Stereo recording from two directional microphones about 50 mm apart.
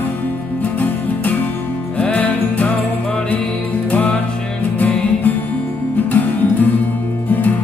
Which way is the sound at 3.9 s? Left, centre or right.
Left.